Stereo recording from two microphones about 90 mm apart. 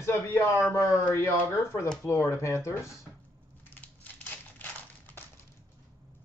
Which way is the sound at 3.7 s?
15° left (ahead or behind).